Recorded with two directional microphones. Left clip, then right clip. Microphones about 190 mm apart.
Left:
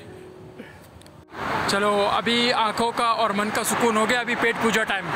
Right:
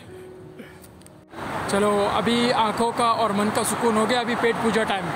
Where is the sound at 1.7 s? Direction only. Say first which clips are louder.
Right 1 dB; centre (ahead or behind).